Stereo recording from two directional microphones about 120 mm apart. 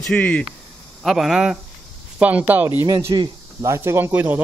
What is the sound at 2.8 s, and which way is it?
Speech, 30° right (ahead or behind).